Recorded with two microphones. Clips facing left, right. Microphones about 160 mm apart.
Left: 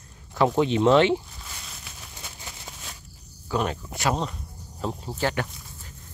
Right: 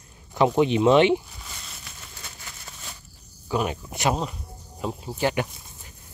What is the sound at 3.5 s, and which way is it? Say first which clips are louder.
Speech: right 1 dB; 15° right (ahead or behind).